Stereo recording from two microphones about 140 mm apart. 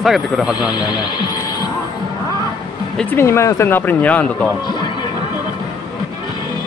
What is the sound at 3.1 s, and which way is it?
Speech, 20° left (ahead or behind).